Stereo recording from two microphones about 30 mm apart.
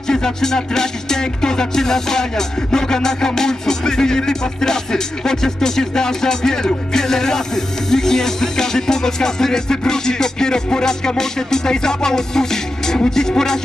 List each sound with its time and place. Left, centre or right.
0.1 s music: centre